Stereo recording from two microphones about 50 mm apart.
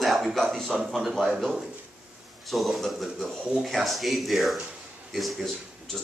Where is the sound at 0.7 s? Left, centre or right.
Centre.